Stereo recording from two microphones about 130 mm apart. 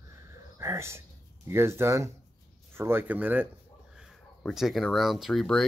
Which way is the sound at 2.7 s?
20° right (ahead or behind).